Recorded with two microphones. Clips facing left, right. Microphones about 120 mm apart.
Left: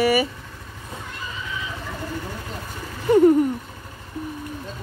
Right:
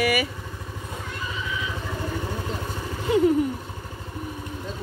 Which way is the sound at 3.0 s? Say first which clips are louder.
Left 6 dB; 45° left (ahead or behind).